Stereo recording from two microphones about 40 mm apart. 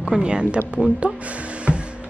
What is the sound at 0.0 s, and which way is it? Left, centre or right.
Speech, right.